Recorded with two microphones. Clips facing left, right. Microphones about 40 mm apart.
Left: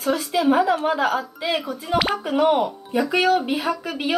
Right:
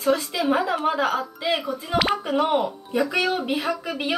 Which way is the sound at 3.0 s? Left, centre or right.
Left.